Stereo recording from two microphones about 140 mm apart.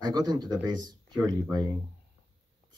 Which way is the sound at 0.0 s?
30° right (ahead or behind).